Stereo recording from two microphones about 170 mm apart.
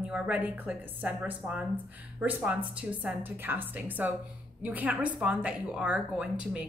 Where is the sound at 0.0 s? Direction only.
5° right (ahead or behind).